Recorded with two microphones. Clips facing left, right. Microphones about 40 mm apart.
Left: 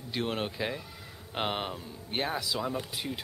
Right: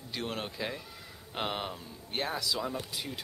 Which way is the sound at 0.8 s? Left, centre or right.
Centre.